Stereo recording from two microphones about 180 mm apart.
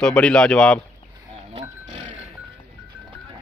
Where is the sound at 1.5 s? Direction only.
40° right (ahead or behind).